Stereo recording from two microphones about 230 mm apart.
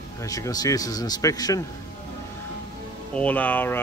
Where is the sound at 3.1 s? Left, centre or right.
Centre.